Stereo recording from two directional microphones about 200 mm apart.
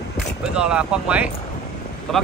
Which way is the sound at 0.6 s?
5° right (ahead or behind).